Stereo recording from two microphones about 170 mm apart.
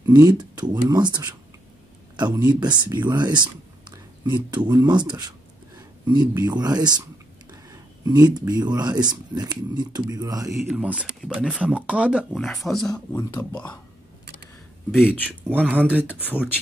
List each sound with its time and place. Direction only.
0.0 s speech: 25° right (ahead or behind)
8.0 s speech: 25° right (ahead or behind)
10.7 s speech: 5° right (ahead or behind)
12.9 s speech: 20° left (ahead or behind)
14.9 s speech: centre (ahead or behind)